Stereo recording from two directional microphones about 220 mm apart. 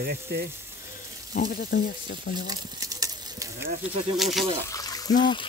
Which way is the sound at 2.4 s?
15° right (ahead or behind).